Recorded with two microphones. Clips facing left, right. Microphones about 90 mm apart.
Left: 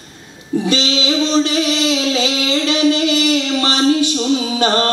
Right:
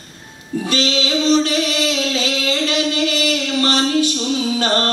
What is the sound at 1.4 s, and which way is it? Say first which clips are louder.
Singing: left 3 dB; 20° left (ahead or behind).